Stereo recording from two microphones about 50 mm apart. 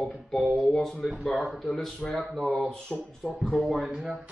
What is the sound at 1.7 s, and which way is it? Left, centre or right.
Speech, centre.